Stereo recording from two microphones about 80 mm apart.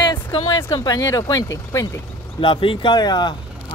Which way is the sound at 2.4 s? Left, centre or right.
Left.